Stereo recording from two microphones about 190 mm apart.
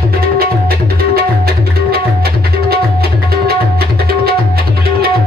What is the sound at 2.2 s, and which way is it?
Tabla, 55° right (ahead or behind).